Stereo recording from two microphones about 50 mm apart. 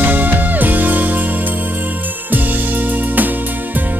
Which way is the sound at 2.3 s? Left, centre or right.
Right.